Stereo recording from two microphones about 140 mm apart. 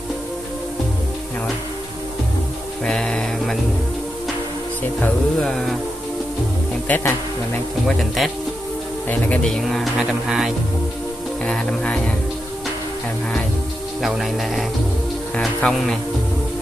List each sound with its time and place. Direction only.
2.8 s a sound: 5° left (ahead or behind)
5.0 s music: 5° left (ahead or behind)
6.9 s speech: 15° left (ahead or behind)
8.2 s music: centre (ahead or behind)
11.4 s speech: 5° left (ahead or behind)
14.0 s music: centre (ahead or behind)
15.3 s speech: 5° left (ahead or behind)